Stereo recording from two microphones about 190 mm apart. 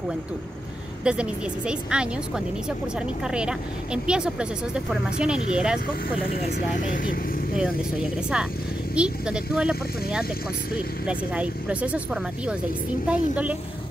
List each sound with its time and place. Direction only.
1.0 s speech: 5° right (ahead or behind)
6.2 s speech: 45° left (ahead or behind)
7.5 s speech: 5° right (ahead or behind)
11.1 s speech: 5° right (ahead or behind)